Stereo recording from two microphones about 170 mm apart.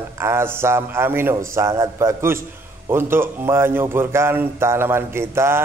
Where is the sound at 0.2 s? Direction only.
15° right (ahead or behind).